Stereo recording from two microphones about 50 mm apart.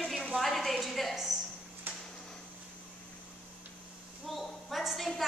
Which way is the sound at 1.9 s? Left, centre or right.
Right.